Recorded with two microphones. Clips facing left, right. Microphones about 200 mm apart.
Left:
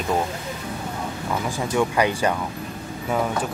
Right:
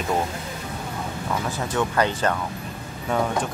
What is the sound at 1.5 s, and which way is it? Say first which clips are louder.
Speech: left 3 dB; 10° left (ahead or behind).